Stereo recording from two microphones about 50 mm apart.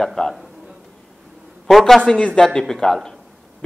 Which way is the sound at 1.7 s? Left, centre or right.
Centre.